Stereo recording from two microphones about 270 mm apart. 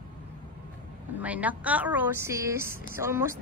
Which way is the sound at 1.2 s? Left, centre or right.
Centre.